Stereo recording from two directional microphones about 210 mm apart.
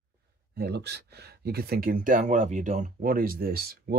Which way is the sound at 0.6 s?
50° right (ahead or behind).